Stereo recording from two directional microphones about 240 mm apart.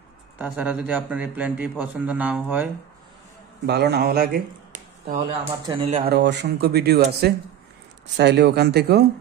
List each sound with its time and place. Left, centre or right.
0.4 s a man's voice: centre
3.6 s speech: right
5.7 s speech: right
6.0 s speech: right